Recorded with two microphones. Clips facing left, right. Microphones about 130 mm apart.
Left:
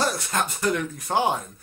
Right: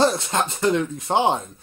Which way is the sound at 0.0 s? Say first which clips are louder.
Right 5 dB; 25° right (ahead or behind).